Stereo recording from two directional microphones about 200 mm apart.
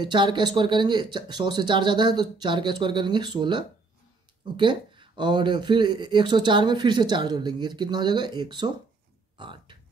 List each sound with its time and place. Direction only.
0.0 s speech: 25° right (ahead or behind)